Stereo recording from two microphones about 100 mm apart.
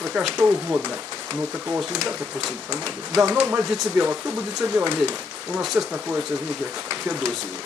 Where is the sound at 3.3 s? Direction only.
15° right (ahead or behind).